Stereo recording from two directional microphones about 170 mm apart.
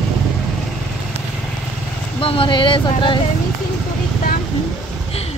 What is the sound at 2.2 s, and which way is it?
Speech, 30° left (ahead or behind).